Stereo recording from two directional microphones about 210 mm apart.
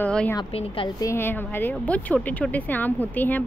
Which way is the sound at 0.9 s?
15° left (ahead or behind).